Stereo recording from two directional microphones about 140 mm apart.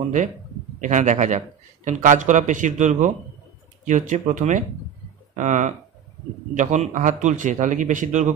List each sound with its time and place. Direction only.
0.7 s a man's voice: 60° right (ahead or behind)